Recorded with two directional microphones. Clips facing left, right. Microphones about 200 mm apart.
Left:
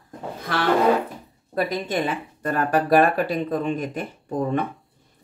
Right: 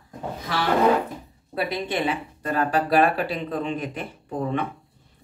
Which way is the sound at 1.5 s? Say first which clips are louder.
Left 2 dB; 45° left (ahead or behind).